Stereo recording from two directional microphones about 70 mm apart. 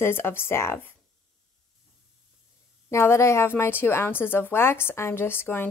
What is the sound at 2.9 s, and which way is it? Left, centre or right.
Speech, left.